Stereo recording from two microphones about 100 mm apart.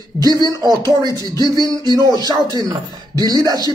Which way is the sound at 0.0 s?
40° right (ahead or behind).